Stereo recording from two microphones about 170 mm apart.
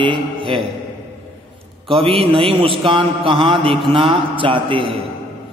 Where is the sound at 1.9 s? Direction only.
30° right (ahead or behind).